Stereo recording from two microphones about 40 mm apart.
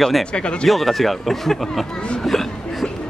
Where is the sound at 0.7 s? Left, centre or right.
Centre.